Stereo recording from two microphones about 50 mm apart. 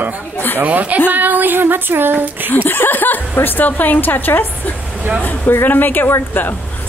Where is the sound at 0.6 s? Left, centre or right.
Right.